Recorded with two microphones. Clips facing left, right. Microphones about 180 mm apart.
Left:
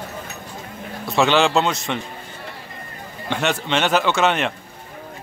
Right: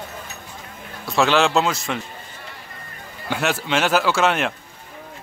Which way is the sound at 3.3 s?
5° right (ahead or behind).